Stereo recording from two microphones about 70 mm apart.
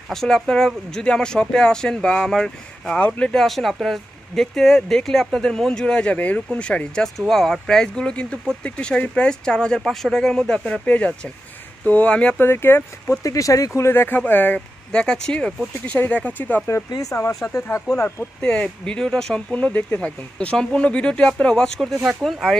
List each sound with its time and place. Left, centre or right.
0.1 s speech: centre
3.4 s speech: centre
7.2 s speech: centre
9.8 s speech: centre
12.4 s speech: left
13.1 s speech: left
13.7 s speech: left
14.9 s speech: centre
16.9 s speech: left
18.4 s speech: centre
19.5 s speech: left; by 22.6 s centre